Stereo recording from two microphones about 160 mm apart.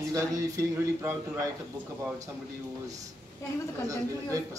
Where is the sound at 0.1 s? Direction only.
20° right (ahead or behind).